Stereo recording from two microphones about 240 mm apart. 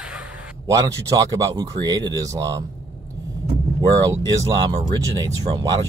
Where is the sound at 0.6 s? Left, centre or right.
Centre.